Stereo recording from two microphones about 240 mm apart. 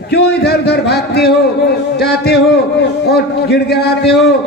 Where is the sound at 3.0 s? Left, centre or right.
Left.